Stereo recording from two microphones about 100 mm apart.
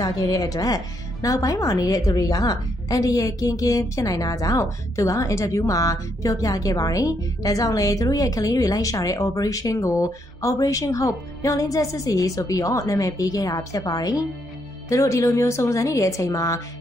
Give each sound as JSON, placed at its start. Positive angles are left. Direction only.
{"t": 0.0, "sound": "speech", "side_deg": 35}